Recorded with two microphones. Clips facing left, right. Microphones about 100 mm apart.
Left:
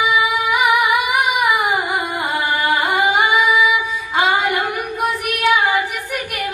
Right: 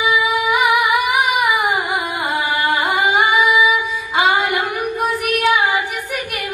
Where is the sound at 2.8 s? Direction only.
15° right (ahead or behind).